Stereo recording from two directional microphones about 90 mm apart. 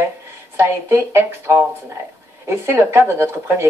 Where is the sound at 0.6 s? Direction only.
30° right (ahead or behind).